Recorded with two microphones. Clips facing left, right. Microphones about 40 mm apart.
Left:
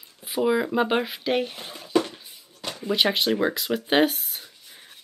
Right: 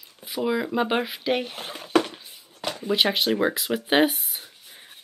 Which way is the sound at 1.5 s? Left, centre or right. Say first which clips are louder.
Right 1 dB; right.